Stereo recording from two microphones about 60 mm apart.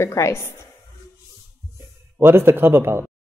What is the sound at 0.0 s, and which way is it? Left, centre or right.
Speech, left.